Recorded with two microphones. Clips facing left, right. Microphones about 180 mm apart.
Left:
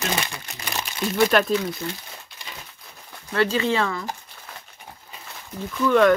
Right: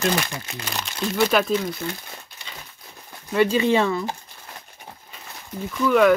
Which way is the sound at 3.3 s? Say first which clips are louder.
Right 3 dB; 15° right (ahead or behind).